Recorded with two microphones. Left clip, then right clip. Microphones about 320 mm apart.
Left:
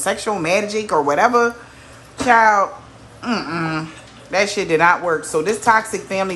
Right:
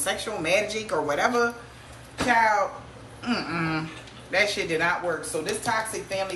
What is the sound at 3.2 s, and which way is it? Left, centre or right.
Speech, centre.